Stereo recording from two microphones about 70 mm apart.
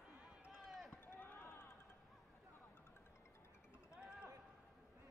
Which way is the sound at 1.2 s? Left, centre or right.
Left.